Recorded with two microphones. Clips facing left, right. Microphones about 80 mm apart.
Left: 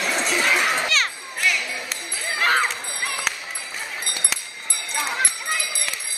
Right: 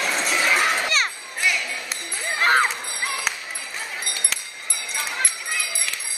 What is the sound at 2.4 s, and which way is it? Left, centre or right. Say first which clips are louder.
Music: right 2 dB; centre.